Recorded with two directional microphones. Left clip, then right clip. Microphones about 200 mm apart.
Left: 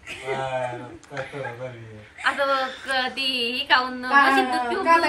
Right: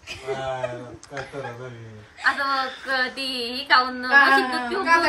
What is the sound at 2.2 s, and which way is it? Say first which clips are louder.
Speech: even; 20° left (ahead or behind).